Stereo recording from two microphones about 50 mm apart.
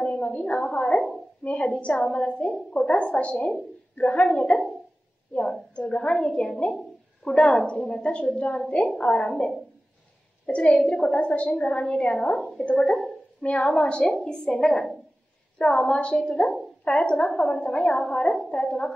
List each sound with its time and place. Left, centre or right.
0.0 s a sound: left
1.4 s a woman's voice: left
10.4 s a woman's voice: left
12.4 s a woman's voice: centre
12.6 s a woman's voice: left